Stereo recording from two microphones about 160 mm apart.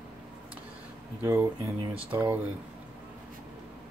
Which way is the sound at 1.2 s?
20° right (ahead or behind).